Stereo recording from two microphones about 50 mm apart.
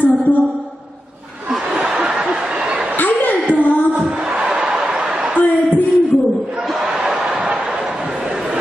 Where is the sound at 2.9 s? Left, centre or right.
Left.